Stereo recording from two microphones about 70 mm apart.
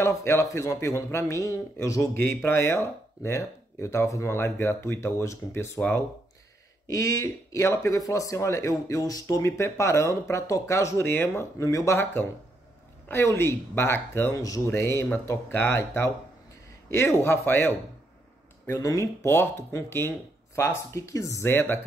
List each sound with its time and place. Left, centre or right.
0.1 s speech: left
6.9 s speech: left
7.9 s speech: left
9.4 s speech: left
11.0 s speech: left
11.5 s speech: left
13.1 s speech: left
14.3 s speech: left
14.7 s speech: left
18.7 s speech: left
19.2 s speech: left
21.5 s speech: left